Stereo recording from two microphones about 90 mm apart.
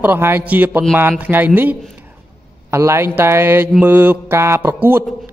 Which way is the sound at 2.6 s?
30° right (ahead or behind).